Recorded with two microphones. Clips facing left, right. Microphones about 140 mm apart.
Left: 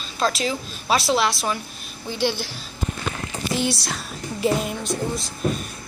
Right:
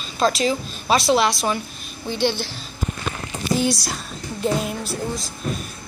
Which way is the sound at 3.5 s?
Centre (ahead or behind).